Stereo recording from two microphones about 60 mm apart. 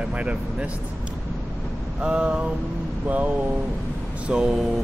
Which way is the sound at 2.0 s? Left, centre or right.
Centre.